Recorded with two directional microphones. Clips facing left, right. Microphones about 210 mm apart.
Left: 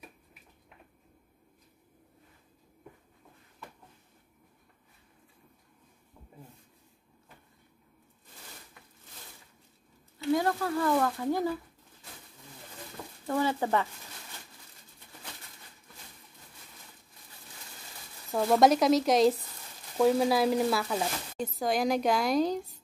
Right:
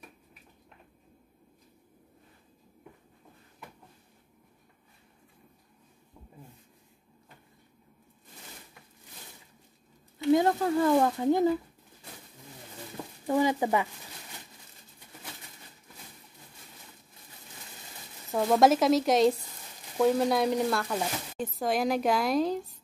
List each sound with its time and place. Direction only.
10.1 s speech: 20° right (ahead or behind)
13.3 s speech: 15° right (ahead or behind)
18.3 s speech: centre (ahead or behind)